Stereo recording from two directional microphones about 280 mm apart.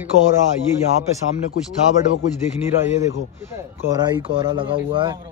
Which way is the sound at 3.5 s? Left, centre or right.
Centre.